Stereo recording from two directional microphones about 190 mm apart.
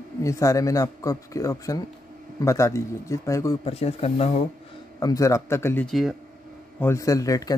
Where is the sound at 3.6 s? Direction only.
30° left (ahead or behind).